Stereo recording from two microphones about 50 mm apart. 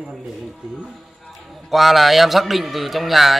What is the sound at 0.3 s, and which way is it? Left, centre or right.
Speech, centre.